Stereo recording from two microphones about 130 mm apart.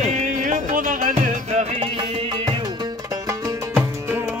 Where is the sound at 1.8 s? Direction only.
40° right (ahead or behind).